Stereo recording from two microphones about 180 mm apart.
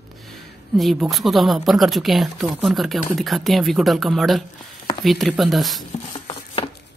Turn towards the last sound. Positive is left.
turn(degrees=30)  # may be behind; listen again after turning